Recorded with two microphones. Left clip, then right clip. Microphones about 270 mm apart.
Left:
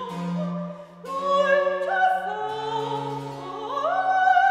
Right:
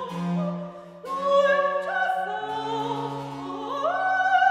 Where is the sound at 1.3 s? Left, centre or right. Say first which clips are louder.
Even; centre.